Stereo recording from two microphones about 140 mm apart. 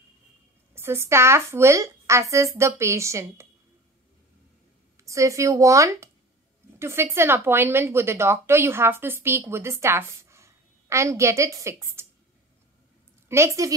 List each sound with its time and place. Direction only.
0.7 s speech: 20° right (ahead or behind)
5.0 s a woman's voice: 20° right (ahead or behind)
13.3 s speech: 20° right (ahead or behind)